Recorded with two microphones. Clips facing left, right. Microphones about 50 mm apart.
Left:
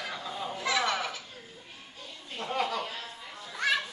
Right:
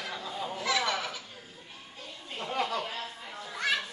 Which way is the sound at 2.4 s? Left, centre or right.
Centre.